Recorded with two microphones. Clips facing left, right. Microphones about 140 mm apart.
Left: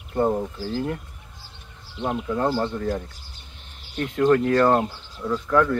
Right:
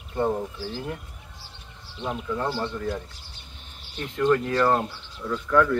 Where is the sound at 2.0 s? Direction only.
40° left (ahead or behind).